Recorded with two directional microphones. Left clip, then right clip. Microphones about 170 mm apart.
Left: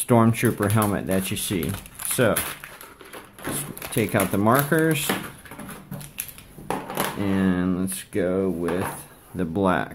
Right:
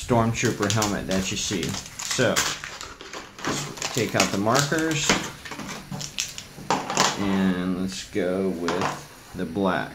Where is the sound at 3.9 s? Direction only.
60° left (ahead or behind).